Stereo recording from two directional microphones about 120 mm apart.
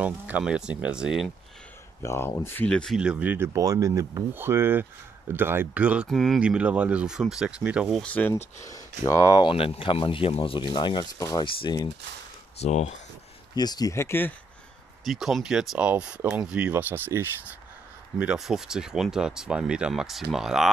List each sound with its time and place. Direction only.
0.0 s speech: 10° right (ahead or behind)
2.0 s speech: 20° left (ahead or behind)
3.0 s speech: 10° right (ahead or behind)
3.5 s speech: 30° right (ahead or behind); by 6.0 s 10° right (ahead or behind)
6.0 s speech: centre (ahead or behind)
6.4 s speech: 10° right (ahead or behind)
8.0 s speech: 15° left (ahead or behind)
8.6 s speech: 25° left (ahead or behind)
9.4 s speech: 50° left (ahead or behind)
11.1 s speech: 30° left (ahead or behind)
12.5 s speech: 65° left (ahead or behind)
13.6 s speech: 35° left (ahead or behind)
15.0 s speech: centre (ahead or behind); by 17.3 s 20° right (ahead or behind)
18.2 s speech: 5° right (ahead or behind)